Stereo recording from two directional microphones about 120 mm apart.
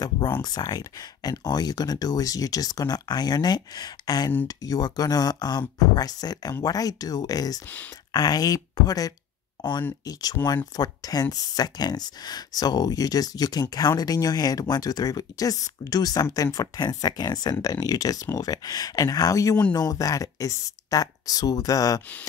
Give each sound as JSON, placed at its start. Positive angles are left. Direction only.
{"t": 0.4, "sound": "speech", "side_deg": 35}